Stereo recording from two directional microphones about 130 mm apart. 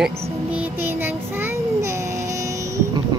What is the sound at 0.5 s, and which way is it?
Child singing, 15° right (ahead or behind).